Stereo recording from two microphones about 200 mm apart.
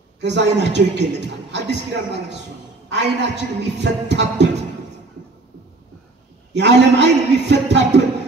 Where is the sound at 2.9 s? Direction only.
60° right (ahead or behind).